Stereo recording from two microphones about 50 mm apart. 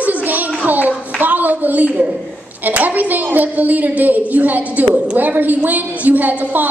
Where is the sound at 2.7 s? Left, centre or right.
Right.